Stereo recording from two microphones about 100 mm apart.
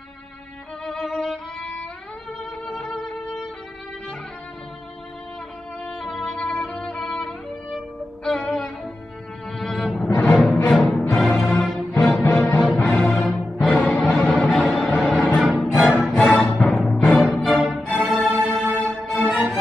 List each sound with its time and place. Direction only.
0.8 s violin: 5° left (ahead or behind)
2.6 s music: 5° left (ahead or behind)
5.9 s music: 5° left (ahead or behind)
12.2 s music: 20° left (ahead or behind)
12.7 s music: 10° left (ahead or behind); by 19.6 s 5° right (ahead or behind)